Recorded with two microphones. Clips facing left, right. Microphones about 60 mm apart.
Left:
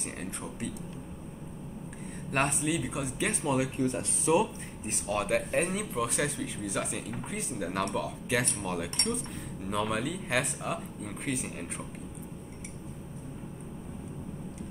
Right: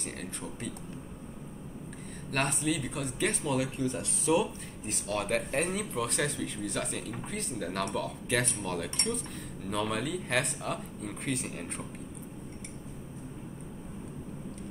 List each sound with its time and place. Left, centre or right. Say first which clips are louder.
0.2 s speech: left 2 dB; centre
2.3 s speech: left 1 dB; centre
3.5 s speech: left 2 dB; left
5.1 s speech: left 2 dB; centre